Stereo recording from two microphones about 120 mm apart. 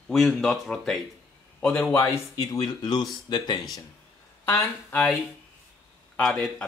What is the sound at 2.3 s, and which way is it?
Speech, 30° left (ahead or behind).